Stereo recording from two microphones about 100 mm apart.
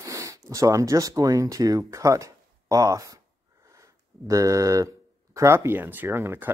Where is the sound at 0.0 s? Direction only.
30° right (ahead or behind).